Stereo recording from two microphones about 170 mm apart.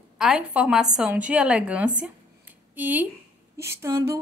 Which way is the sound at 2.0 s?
10° right (ahead or behind).